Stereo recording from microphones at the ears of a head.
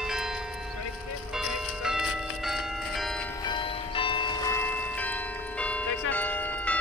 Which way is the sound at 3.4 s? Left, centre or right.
Left.